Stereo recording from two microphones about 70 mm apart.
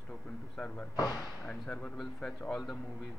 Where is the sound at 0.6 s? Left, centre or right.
Centre.